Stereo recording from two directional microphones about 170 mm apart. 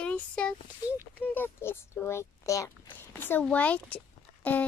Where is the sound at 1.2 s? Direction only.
10° left (ahead or behind).